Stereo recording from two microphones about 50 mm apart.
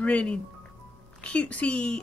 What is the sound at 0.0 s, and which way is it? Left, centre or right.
Speech, left.